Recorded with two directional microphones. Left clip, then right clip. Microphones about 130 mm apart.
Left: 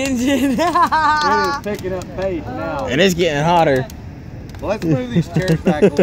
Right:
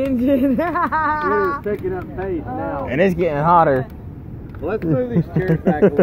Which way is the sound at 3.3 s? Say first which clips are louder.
Right 3 dB; 60° left (ahead or behind).